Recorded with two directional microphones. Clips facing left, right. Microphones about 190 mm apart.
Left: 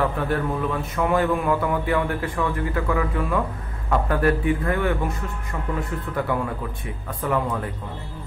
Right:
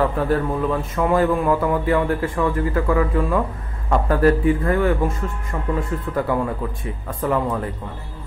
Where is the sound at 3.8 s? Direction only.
35° right (ahead or behind).